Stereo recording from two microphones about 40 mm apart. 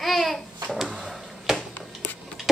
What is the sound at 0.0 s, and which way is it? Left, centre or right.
Babbling, centre.